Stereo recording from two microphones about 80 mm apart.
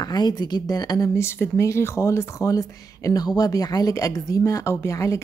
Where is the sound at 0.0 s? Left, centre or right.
Left.